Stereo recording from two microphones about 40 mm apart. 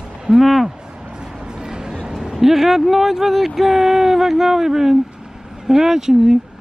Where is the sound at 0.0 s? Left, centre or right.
Centre.